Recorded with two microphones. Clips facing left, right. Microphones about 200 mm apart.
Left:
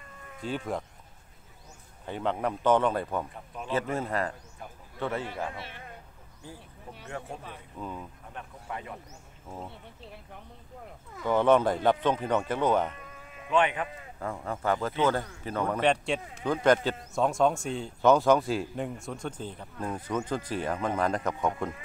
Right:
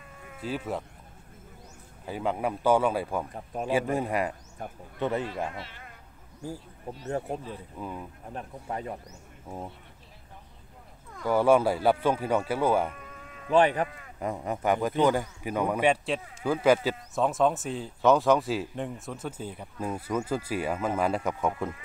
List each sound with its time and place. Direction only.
0.4 s speech: 5° right (ahead or behind)
2.0 s speech: 5° right (ahead or behind)
3.5 s speech: 45° right (ahead or behind)
3.9 s speech: 15° right (ahead or behind)
7.8 s speech: 5° right (ahead or behind)
8.3 s speech: 35° right (ahead or behind)
11.2 s speech: 10° right (ahead or behind)
13.5 s speech: 35° right (ahead or behind)
14.2 s speech: 15° right (ahead or behind)